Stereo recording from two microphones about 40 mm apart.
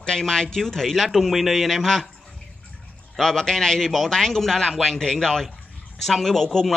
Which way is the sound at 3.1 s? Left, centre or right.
Centre.